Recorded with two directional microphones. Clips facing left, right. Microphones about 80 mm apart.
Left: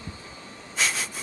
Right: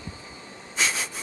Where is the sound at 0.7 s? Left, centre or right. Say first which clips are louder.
Right 1 dB; centre.